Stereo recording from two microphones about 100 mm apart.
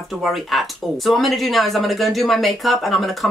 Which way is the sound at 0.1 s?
Centre (ahead or behind).